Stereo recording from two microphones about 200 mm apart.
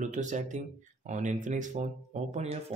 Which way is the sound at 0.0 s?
40° right (ahead or behind).